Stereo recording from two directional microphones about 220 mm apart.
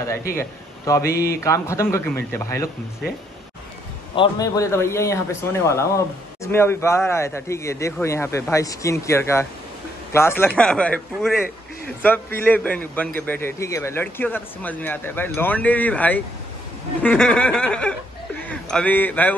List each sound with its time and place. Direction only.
0.4 s a man's voice: 15° left (ahead or behind)
1.1 s speech: 45° left (ahead or behind)
1.4 s speech: 15° left (ahead or behind)
4.1 s speech: 20° left (ahead or behind)
17.0 s a sound: 5° left (ahead or behind)
18.4 s a man's voice: 5° left (ahead or behind)